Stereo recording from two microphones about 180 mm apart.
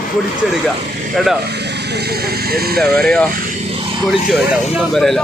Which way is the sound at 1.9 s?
60° right (ahead or behind).